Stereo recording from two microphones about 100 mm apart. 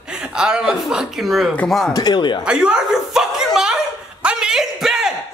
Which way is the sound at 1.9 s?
45° left (ahead or behind).